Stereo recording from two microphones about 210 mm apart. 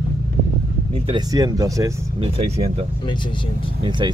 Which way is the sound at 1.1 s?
15° right (ahead or behind).